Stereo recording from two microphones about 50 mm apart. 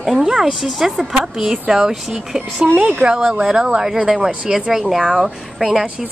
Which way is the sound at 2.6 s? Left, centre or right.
Right.